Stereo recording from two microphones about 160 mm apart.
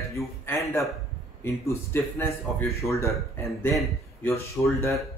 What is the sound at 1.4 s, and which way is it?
Speech, 15° left (ahead or behind).